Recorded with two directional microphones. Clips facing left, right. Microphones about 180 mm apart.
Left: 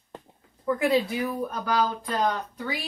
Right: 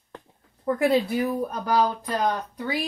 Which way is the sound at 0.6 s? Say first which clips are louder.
Right 2 dB; 35° right (ahead or behind).